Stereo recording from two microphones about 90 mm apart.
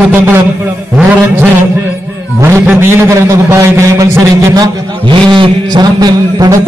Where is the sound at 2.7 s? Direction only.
30° right (ahead or behind).